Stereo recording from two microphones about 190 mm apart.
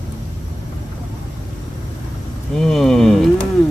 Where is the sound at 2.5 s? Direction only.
Centre (ahead or behind).